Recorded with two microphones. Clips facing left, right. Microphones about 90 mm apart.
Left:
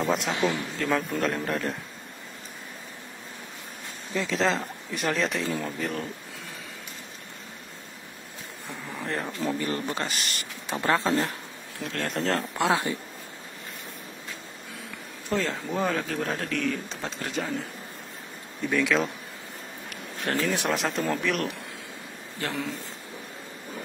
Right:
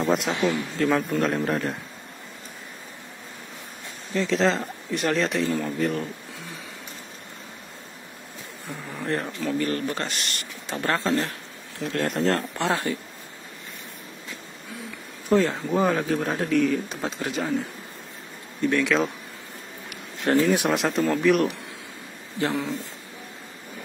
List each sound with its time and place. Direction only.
0.0 s speech: centre (ahead or behind)
4.1 s speech: 5° left (ahead or behind)
8.9 s speech: centre (ahead or behind)
9.4 s speech: 20° left (ahead or behind)
10.0 s speech: centre (ahead or behind)
10.7 s speech: 15° left (ahead or behind)
11.8 s speech: centre (ahead or behind)
15.2 s speech: 15° right (ahead or behind); by 19.1 s centre (ahead or behind)
20.5 s a man's voice: 5° right (ahead or behind)